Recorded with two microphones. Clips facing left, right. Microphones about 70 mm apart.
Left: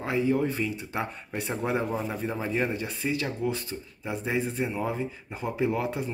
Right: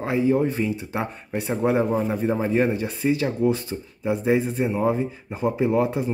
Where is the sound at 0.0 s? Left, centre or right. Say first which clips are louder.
Right 5 dB; right.